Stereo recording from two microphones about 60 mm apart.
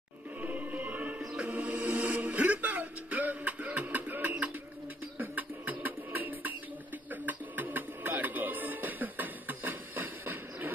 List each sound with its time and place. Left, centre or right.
0.4 s music: right
1.2 s music: centre; by 10.7 s right